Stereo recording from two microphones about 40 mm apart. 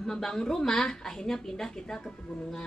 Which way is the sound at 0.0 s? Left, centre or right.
Centre.